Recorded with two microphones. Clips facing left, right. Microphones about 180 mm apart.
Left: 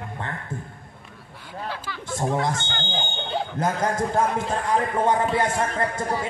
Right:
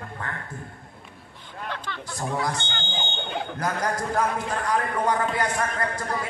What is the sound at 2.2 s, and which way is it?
A man's voice, 25° left (ahead or behind).